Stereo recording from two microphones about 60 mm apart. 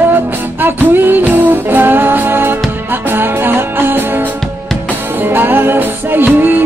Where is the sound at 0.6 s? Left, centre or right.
Right.